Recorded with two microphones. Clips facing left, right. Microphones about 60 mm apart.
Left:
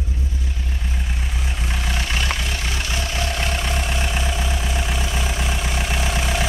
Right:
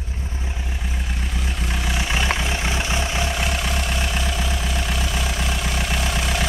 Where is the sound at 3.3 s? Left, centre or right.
Centre.